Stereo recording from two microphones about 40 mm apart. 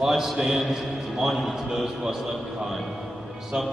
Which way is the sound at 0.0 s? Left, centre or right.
Centre.